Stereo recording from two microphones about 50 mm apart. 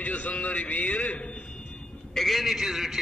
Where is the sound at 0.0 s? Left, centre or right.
Left.